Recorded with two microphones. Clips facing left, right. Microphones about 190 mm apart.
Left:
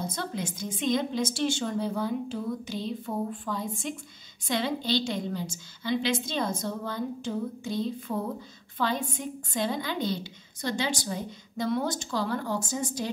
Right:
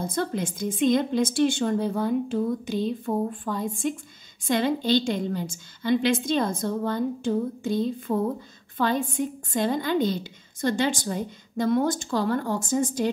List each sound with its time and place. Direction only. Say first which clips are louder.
0.0 s a woman's voice: right 6 dB; 50° right (ahead or behind)